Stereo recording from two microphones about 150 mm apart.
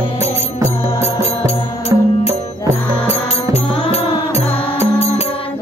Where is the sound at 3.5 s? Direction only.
45° left (ahead or behind).